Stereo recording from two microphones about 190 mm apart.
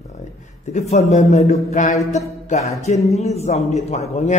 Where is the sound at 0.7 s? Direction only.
35° left (ahead or behind).